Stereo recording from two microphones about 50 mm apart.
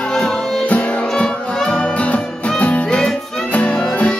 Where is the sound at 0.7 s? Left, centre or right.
Left.